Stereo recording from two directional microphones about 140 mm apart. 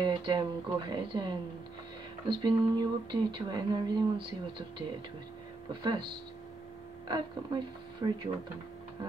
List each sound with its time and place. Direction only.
0.0 s speech: 35° right (ahead or behind)
7.1 s speech: 30° right (ahead or behind)